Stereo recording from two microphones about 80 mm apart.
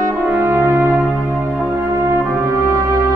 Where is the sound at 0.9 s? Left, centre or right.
Centre.